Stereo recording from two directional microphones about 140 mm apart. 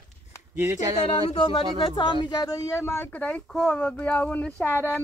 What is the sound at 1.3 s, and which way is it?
Speech, 35° left (ahead or behind).